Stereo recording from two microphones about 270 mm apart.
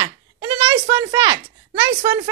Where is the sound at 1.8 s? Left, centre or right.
Centre.